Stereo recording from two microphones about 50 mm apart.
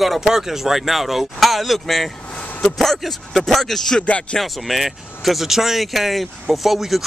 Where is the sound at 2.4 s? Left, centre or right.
Left.